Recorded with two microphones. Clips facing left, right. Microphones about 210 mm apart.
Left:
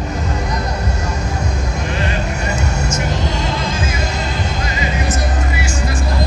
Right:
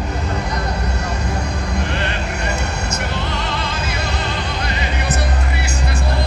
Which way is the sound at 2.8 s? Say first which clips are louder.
Left 3 dB; 60° right (ahead or behind).